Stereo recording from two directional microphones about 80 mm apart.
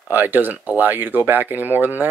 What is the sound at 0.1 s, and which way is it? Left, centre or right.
Speech, right.